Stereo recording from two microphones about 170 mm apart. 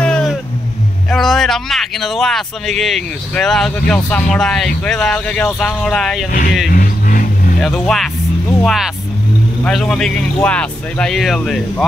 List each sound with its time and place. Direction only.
0.0 s vehicle: 5° left (ahead or behind)
1.1 s speech: centre (ahead or behind)
6.7 s vehicle: 50° left (ahead or behind)
7.6 s speech: centre (ahead or behind)